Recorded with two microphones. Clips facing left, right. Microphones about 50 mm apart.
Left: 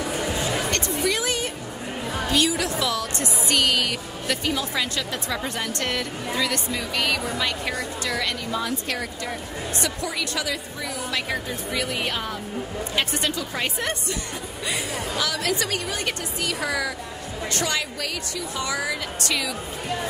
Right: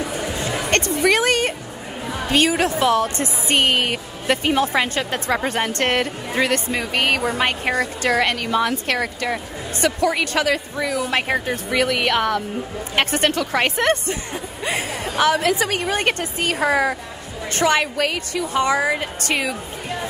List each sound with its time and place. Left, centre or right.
0.1 s music: centre
0.7 s music: right
2.2 s a woman's voice: right
12.9 s a woman's voice: right
14.6 s a woman's voice: right